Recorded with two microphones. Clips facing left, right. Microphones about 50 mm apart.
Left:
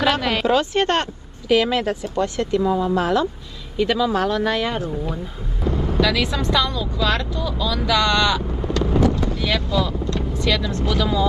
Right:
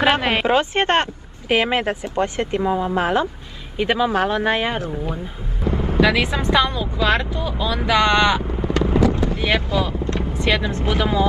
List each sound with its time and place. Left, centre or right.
0.0 s speech: right